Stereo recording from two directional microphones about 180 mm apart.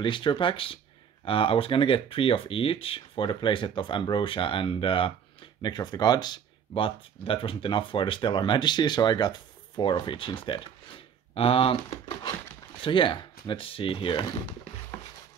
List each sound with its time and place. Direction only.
0.0 s speech: 25° left (ahead or behind)